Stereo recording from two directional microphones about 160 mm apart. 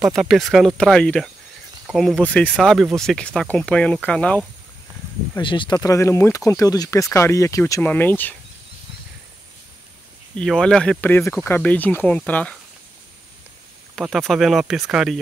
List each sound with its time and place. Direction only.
0.2 s speech: centre (ahead or behind)
5.4 s speech: 30° left (ahead or behind); by 8.4 s 10° left (ahead or behind)
10.3 s speech: 5° left (ahead or behind)
14.0 s speech: centre (ahead or behind)